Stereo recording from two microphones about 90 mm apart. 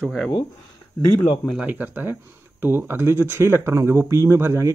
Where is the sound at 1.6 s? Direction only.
20° right (ahead or behind).